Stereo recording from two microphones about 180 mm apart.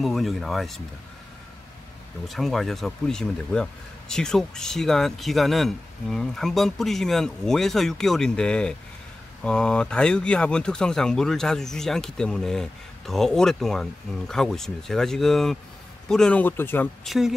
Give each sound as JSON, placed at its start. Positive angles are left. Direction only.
{"t": 0.0, "sound": "speech", "side_deg": 0}
{"t": 2.2, "sound": "speech", "side_deg": 0}